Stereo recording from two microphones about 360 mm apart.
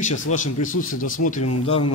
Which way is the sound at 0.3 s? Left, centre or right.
Left.